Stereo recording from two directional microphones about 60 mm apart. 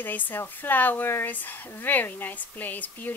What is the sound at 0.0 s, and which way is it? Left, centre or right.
A woman's voice, left.